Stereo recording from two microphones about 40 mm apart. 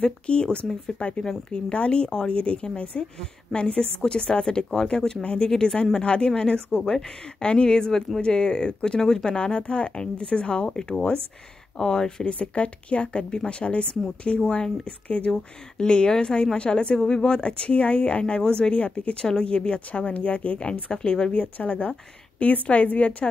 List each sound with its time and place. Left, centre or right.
0.0 s speech: left
11.8 s speech: centre
12.3 s speech: left
15.0 s a woman's voice: left
15.8 s speech: left
20.9 s speech: left
21.4 s a woman's voice: left